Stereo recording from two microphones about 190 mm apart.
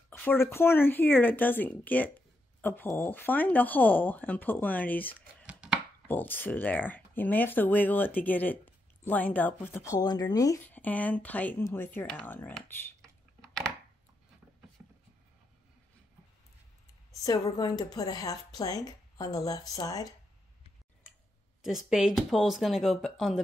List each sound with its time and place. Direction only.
0.1 s speech: 10° left (ahead or behind)
13.4 s a sound: 5° left (ahead or behind)
17.1 s a woman's voice: 20° left (ahead or behind)
21.6 s speech: centre (ahead or behind)